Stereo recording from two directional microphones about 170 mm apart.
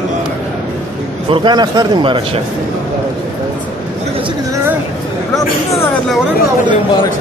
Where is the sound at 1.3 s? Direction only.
25° right (ahead or behind).